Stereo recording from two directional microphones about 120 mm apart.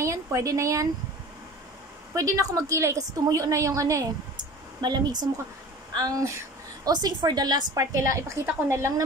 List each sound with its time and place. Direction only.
0.0 s speech: 25° right (ahead or behind)
2.1 s a woman's voice: 25° right (ahead or behind)